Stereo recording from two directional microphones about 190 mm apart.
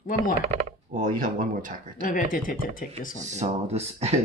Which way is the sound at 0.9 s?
45° right (ahead or behind).